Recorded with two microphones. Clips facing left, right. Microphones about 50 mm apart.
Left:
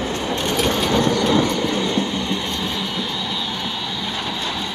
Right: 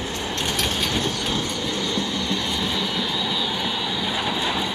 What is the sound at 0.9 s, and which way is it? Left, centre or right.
Train, left.